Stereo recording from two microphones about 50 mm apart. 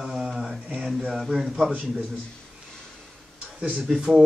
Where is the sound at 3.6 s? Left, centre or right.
Right.